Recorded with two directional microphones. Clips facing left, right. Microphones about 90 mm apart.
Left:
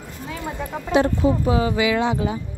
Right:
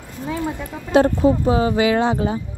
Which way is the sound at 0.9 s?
40° right (ahead or behind).